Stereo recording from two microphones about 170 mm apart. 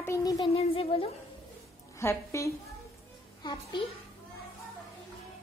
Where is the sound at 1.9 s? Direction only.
15° left (ahead or behind).